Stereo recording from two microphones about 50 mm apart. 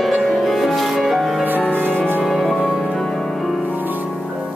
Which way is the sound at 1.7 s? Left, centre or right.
Right.